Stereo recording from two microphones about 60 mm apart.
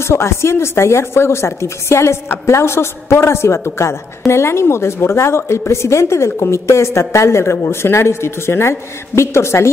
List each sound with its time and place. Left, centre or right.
0.0 s speech: left